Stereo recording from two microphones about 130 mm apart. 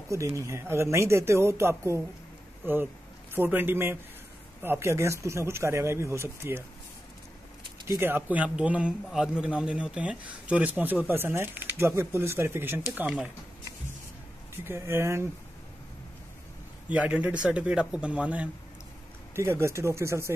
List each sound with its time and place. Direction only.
0.1 s a man's voice: 25° right (ahead or behind)
7.9 s a man's voice: 15° right (ahead or behind)
14.5 s speech: 20° right (ahead or behind)
16.9 s a man's voice: 10° right (ahead or behind)
19.3 s speech: 20° right (ahead or behind)